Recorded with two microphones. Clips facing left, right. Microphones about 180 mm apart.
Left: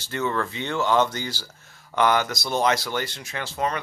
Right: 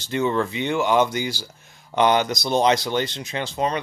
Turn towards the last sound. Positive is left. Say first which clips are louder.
# right 3 dB
turn(degrees=-20)  # may be behind; listen again after turning